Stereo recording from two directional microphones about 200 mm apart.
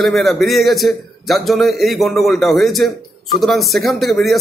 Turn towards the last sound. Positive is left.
turn(degrees=0)  # may be behind; listen again after turning